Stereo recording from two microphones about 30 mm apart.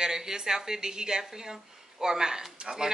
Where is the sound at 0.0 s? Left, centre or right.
Centre.